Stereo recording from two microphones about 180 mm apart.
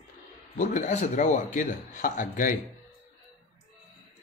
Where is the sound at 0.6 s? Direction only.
40° left (ahead or behind).